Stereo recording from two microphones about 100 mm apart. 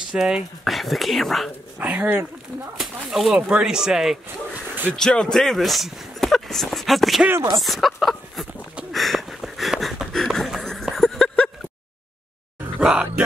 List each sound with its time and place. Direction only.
0.1 s speech: 5° right (ahead or behind)
1.8 s speech: 15° right (ahead or behind)
2.8 s speech: 5° right (ahead or behind)
4.9 s speech: 5° left (ahead or behind)
8.9 s a sound: centre (ahead or behind)
12.8 s music: 10° right (ahead or behind)